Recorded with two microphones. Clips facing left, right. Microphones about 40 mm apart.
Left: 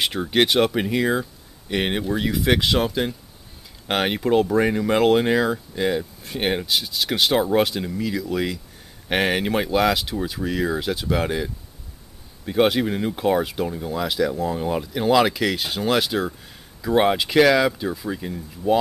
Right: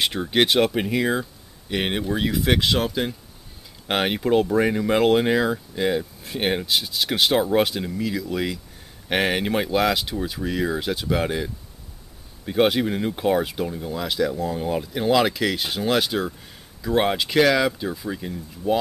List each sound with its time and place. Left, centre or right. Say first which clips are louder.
0.0 s speech: left 1 dB; centre